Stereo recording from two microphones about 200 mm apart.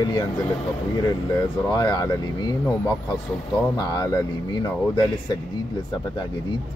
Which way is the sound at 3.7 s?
20° left (ahead or behind).